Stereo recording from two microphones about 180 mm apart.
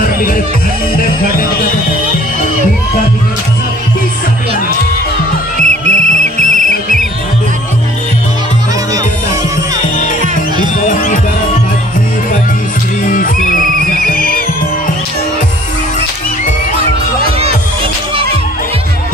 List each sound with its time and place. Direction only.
0.9 s speech: 50° left (ahead or behind)
5.6 s whistle: 40° right (ahead or behind)
10.6 s music: 45° left (ahead or behind)
13.0 s music: 50° left (ahead or behind)